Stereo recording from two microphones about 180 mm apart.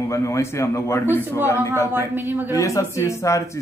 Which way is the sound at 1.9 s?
10° right (ahead or behind).